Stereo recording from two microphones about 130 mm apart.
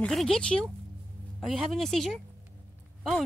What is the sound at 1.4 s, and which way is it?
Speech, centre (ahead or behind).